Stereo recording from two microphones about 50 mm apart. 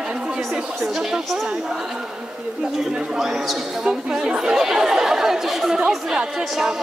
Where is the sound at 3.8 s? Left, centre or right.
Centre.